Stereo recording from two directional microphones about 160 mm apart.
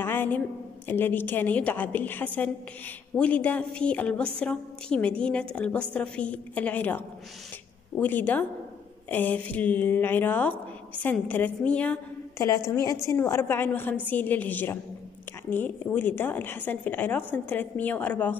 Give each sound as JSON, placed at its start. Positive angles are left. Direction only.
{"t": 0.0, "sound": "a sound", "side_deg": 15}
{"t": 0.8, "sound": "a woman's voice", "side_deg": 10}
{"t": 8.0, "sound": "a woman's voice", "side_deg": 10}
{"t": 12.4, "sound": "a woman's voice", "side_deg": 20}